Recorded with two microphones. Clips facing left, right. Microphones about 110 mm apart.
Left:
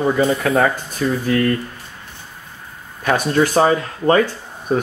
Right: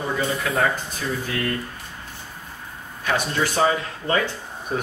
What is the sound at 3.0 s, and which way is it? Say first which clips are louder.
Speech: left 7 dB; 50° left (ahead or behind).